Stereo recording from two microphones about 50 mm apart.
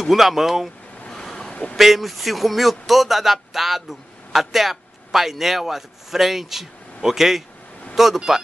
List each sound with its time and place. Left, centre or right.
0.0 s speech: centre
1.0 s waves: centre
1.5 s a sound: left
1.8 s speech: centre